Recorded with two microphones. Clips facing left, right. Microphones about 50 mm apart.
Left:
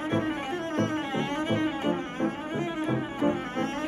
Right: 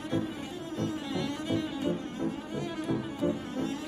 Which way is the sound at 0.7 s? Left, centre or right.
Left.